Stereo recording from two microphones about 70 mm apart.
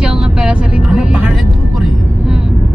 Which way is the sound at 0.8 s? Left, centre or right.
Centre.